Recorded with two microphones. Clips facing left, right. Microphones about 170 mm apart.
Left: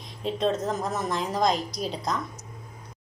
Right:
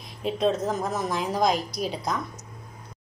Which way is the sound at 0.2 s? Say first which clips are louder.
Right 2 dB; 5° right (ahead or behind).